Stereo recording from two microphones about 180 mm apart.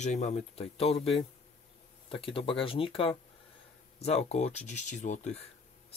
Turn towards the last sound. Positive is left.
turn(degrees=40)  # may be behind; listen again after turning